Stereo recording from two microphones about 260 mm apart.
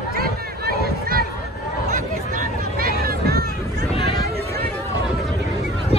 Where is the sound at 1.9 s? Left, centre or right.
Right.